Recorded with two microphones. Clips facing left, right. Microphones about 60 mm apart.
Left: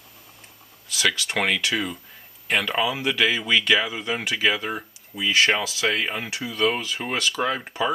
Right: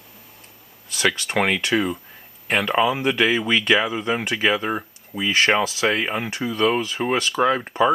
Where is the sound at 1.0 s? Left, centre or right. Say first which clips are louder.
Right 3 dB; centre.